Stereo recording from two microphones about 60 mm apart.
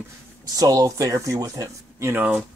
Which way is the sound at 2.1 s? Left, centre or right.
Right.